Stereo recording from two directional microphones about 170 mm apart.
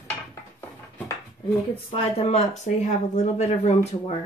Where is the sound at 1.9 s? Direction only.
35° left (ahead or behind).